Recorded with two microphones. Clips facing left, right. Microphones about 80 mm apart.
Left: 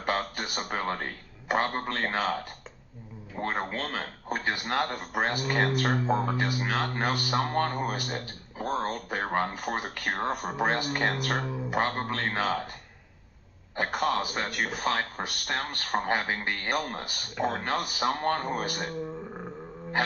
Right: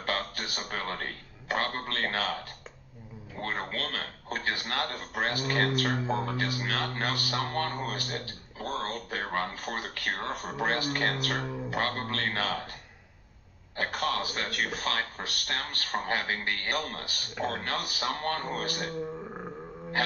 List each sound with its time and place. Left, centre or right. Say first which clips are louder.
0.0 s a sound: left 3 dB; left
3.3 s a man's voice: left 3 dB; centre
11.3 s speech: left 2 dB; centre
11.7 s a man's voice: left 4 dB; centre
13.7 s a man's voice: left 3 dB; centre